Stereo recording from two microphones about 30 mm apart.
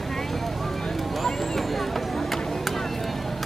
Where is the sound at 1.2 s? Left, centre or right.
Centre.